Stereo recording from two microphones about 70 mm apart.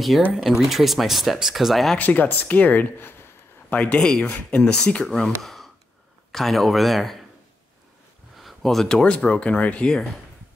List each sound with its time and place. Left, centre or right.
0.3 s speech: centre
2.0 s speech: left
3.7 s speech: centre
5.4 s sigh: centre
6.3 s speech: centre
8.4 s speech: centre